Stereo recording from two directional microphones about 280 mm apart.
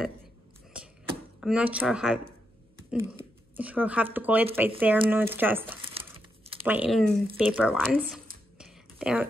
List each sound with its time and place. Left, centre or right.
1.4 s speech: centre
5.8 s crumpling: centre
6.6 s speech: centre
8.5 s a sound: centre